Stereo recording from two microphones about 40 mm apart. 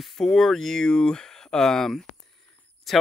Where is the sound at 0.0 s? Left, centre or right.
Centre.